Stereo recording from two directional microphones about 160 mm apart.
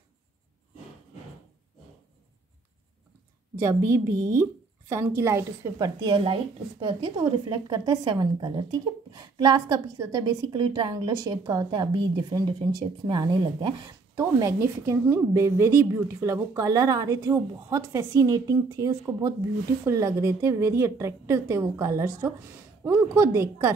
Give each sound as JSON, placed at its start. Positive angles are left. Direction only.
{"t": 3.6, "sound": "a woman's voice", "side_deg": -15}